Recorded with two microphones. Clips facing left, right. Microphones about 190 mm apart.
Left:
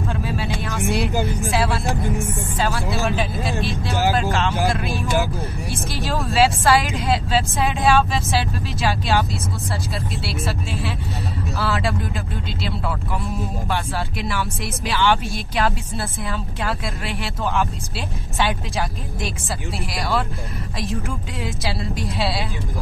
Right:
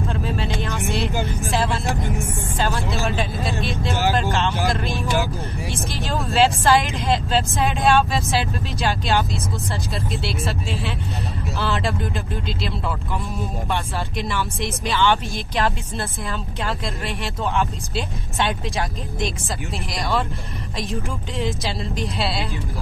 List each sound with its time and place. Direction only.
0.1 s vehicle: 5° left (ahead or behind)
1.9 s speech: 15° left (ahead or behind)
2.6 s speech: centre (ahead or behind)
5.9 s speech: centre (ahead or behind)
13.7 s speech: 5° left (ahead or behind)
17.2 s speech: centre (ahead or behind)
21.4 s speech: centre (ahead or behind)